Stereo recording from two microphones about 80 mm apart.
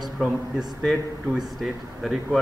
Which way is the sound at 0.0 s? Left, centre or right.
Centre.